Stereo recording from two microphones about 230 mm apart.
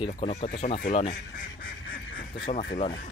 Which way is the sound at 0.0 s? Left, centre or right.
Left.